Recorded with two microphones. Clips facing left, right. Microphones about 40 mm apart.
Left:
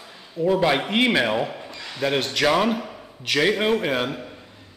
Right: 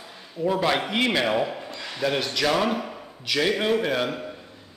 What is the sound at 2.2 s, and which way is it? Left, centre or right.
Speech, left.